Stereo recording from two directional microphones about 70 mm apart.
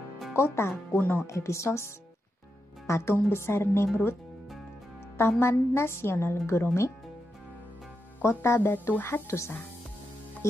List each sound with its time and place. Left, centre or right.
0.4 s speech: left
1.2 s speech: left
2.9 s speech: left
5.4 s speech: left
8.2 s speech: left
10.4 s speech: left